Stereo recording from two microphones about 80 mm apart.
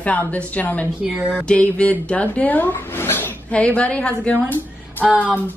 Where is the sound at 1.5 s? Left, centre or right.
Centre.